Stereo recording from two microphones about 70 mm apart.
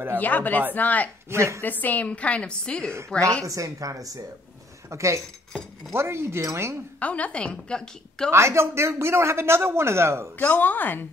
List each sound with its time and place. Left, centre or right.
0.2 s a woman's voice: left
1.3 s a woman's voice: right
1.6 s a woman's voice: left
3.4 s a woman's voice: right
4.8 s a man's voice: right
7.0 s a woman's voice: centre
8.3 s a man's voice: right
10.3 s a woman's voice: left